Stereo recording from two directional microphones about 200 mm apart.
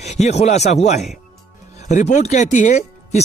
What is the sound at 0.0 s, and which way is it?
Speech, 35° left (ahead or behind).